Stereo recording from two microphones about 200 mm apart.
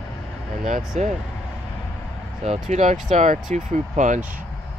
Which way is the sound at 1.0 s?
35° right (ahead or behind).